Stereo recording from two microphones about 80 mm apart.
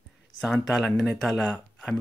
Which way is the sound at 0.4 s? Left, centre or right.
Centre.